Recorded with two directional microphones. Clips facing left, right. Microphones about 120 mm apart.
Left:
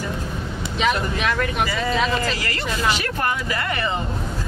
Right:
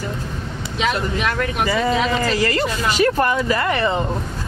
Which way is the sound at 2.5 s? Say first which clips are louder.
Right 3 dB; 35° right (ahead or behind).